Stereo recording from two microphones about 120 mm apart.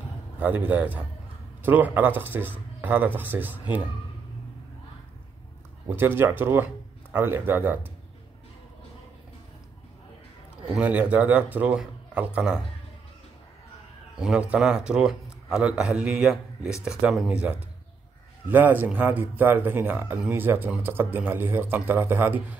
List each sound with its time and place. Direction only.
0.4 s speech: 15° right (ahead or behind)
5.9 s speech: 20° right (ahead or behind)
10.7 s speech: 10° right (ahead or behind)
14.1 s speech: 5° right (ahead or behind)